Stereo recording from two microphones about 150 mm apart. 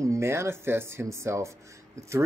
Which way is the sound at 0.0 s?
20° right (ahead or behind).